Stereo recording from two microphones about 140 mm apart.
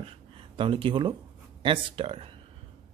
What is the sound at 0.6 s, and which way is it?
Speech, 40° right (ahead or behind).